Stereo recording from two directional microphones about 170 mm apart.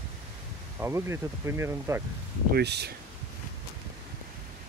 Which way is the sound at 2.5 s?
75° right (ahead or behind).